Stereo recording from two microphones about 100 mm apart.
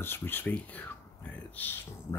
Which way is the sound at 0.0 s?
20° left (ahead or behind).